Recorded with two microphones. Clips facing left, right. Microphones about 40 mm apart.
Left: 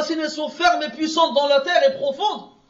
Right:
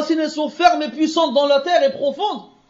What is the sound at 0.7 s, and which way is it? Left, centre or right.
A man's voice, left.